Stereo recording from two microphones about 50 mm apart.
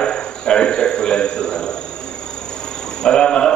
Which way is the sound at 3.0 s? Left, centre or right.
Centre.